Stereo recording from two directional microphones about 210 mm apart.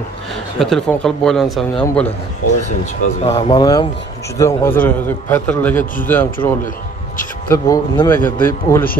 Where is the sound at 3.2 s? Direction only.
20° left (ahead or behind).